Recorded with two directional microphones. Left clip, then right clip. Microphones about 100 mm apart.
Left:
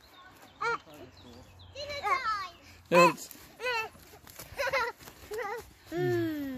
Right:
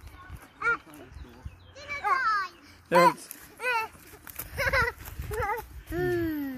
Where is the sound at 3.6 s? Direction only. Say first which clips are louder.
Right 4 dB; 20° left (ahead or behind).